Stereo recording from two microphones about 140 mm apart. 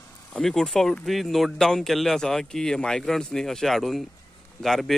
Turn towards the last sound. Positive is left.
turn(degrees=0)  # may be behind; listen again after turning